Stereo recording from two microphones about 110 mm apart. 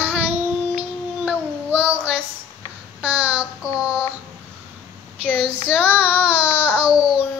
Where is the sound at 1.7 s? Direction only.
20° right (ahead or behind).